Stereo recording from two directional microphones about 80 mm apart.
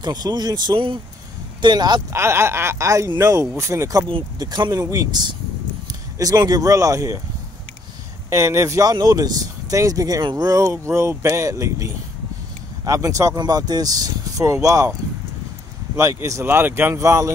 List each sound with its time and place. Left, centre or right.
0.0 s speech: right
1.6 s speech: right
2.1 s speech: right
4.4 s speech: right
8.3 s speech: right
13.4 s speech: right
16.0 s speech: right
16.9 s speech: right